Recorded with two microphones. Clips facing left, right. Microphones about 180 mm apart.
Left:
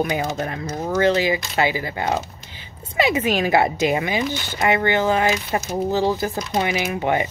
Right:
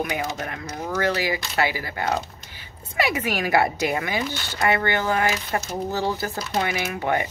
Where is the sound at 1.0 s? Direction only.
20° left (ahead or behind).